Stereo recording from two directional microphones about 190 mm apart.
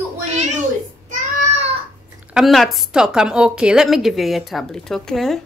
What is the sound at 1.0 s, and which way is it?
Child singing, 35° right (ahead or behind).